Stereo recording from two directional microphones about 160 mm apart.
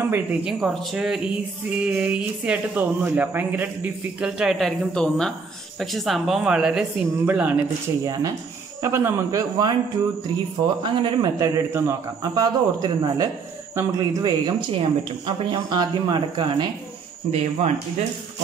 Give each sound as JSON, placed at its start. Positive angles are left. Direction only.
{"t": 0.0, "sound": "speech", "side_deg": -15}
{"t": 8.0, "sound": "speech", "side_deg": -20}
{"t": 10.8, "sound": "speech", "side_deg": -30}
{"t": 17.3, "sound": "speech", "side_deg": -40}